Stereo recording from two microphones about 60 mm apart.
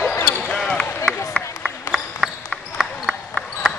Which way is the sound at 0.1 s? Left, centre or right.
Left.